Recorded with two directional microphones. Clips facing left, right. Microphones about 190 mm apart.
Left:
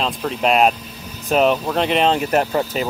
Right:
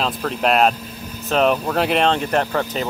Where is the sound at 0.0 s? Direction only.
Centre (ahead or behind).